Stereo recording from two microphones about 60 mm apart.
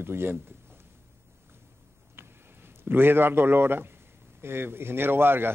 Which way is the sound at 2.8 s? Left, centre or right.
Right.